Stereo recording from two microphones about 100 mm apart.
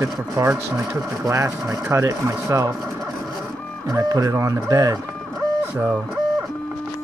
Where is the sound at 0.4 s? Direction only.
30° right (ahead or behind).